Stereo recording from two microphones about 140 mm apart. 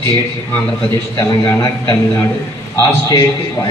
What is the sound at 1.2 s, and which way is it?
A man's voice, 25° left (ahead or behind).